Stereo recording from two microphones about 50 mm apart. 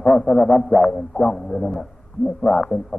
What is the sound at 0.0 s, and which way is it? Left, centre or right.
Music, centre.